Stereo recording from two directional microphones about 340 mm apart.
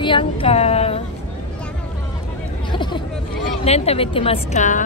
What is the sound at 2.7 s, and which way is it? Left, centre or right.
Hubbub, centre.